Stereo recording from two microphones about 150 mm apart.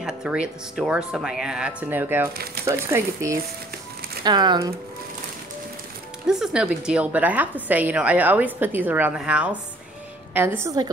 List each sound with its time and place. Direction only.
0.0 s a woman's voice: 5° right (ahead or behind); by 4.7 s 25° right (ahead or behind)
6.2 s a woman's voice: 5° right (ahead or behind); by 10.9 s 20° right (ahead or behind)